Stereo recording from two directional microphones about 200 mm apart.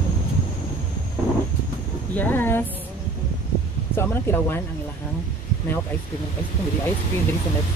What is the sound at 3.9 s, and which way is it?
Speech, 10° left (ahead or behind).